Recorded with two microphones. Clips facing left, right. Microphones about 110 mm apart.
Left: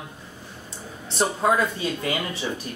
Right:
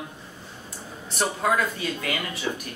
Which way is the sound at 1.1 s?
25° left (ahead or behind).